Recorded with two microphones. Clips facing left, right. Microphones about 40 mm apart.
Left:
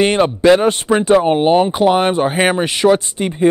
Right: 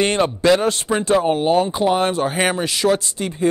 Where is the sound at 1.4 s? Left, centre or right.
Left.